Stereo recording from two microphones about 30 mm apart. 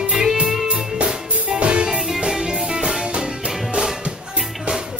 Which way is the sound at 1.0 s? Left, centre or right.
Right.